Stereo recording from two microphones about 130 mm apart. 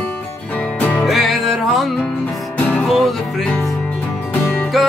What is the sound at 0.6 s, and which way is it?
Music, 10° left (ahead or behind).